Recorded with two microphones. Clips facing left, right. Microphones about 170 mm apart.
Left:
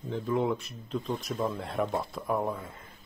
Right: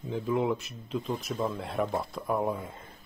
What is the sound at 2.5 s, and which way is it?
Speech, 25° right (ahead or behind).